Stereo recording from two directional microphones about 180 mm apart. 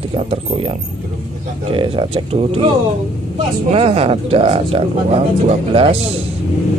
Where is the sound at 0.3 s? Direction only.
30° right (ahead or behind).